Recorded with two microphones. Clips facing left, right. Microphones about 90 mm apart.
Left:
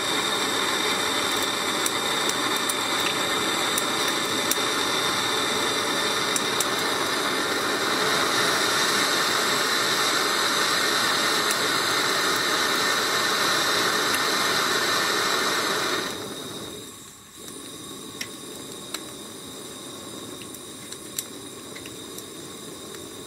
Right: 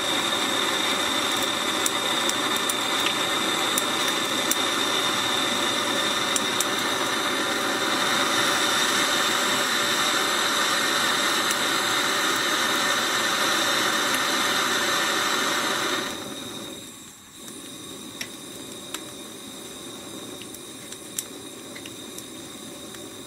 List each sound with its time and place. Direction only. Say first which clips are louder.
0.0 s white noise: even; 15° left (ahead or behind)